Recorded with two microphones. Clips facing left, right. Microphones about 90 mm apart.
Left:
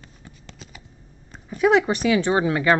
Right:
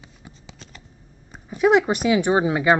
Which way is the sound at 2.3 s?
15° right (ahead or behind).